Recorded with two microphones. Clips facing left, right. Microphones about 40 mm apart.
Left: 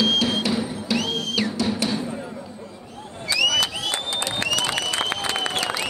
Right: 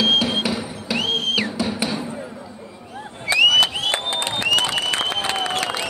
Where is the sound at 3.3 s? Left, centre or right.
Right.